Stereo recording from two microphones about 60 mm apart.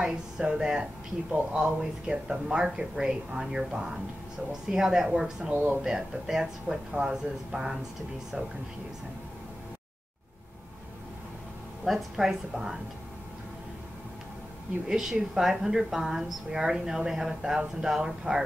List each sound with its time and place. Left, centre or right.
0.0 s a woman's voice: centre
5.5 s speech: right
5.9 s a woman's voice: centre
11.8 s a woman's voice: centre
14.9 s a woman's voice: centre